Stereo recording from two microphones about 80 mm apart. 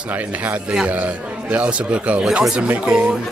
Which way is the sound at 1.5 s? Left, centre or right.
Centre.